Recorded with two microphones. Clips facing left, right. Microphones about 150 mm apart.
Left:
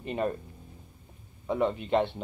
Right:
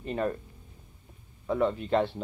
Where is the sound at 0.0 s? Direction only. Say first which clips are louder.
Even; 10° left (ahead or behind).